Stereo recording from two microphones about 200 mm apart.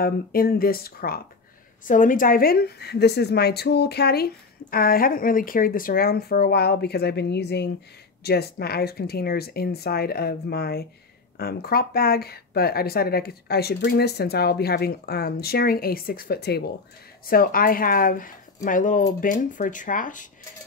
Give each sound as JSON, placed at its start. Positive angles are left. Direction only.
{"t": 0.0, "sound": "speech", "side_deg": 50}